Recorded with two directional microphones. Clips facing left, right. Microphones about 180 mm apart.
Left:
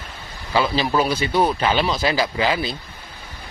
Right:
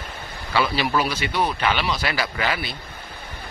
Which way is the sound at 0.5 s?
30° left (ahead or behind).